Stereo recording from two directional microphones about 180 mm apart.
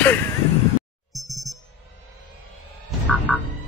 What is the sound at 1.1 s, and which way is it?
Music, centre (ahead or behind).